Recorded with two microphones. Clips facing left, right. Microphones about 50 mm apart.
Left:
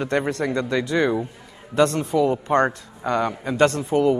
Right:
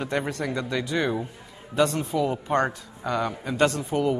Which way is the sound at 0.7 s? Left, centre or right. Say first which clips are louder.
Left 5 dB; left.